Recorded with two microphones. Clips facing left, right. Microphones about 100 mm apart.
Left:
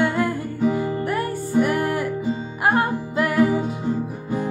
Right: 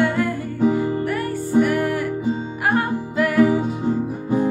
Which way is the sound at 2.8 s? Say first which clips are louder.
Even; 20° left (ahead or behind).